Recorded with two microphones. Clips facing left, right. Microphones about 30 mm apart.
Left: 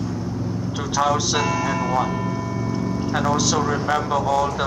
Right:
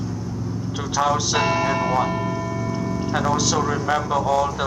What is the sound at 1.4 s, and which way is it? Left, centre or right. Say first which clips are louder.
Speech: right 2 dB; right.